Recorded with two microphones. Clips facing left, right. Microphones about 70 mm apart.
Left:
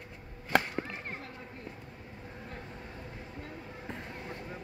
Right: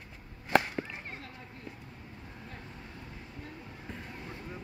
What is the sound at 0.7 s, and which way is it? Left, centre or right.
Whip, left.